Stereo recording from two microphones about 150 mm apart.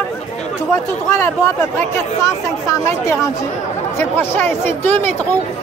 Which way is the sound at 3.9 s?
15° left (ahead or behind).